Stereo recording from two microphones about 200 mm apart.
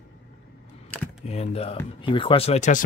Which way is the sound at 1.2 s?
30° left (ahead or behind).